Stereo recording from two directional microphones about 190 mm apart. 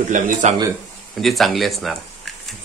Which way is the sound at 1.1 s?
Centre (ahead or behind).